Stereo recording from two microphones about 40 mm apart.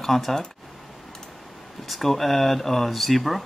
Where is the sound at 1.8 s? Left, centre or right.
Centre.